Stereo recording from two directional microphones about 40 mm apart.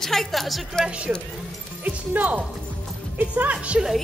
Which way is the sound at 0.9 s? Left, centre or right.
Right.